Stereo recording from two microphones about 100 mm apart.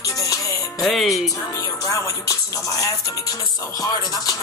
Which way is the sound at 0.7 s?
Centre (ahead or behind).